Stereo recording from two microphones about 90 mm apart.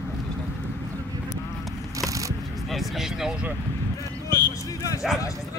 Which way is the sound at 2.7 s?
5° right (ahead or behind).